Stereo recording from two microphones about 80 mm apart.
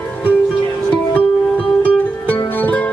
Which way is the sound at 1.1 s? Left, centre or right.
Centre.